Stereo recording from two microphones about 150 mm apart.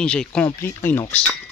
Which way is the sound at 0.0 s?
5° left (ahead or behind).